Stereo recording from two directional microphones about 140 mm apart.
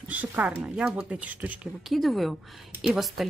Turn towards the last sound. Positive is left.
turn(degrees=0)  # may be behind; listen again after turning